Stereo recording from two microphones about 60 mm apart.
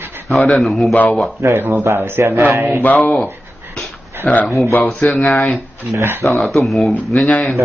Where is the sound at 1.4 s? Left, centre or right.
Right.